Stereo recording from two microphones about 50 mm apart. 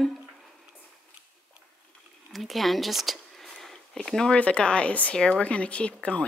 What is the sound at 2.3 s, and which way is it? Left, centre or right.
Speech, centre.